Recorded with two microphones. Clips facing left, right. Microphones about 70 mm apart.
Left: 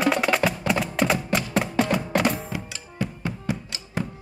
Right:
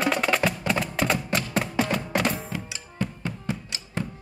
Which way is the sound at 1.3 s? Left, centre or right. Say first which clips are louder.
Left 2 dB; centre.